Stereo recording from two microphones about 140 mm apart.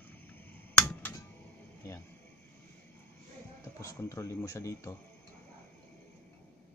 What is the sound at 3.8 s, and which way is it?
Speech, 25° left (ahead or behind).